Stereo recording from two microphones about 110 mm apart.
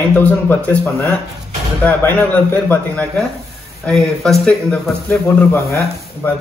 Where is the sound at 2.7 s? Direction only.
10° left (ahead or behind).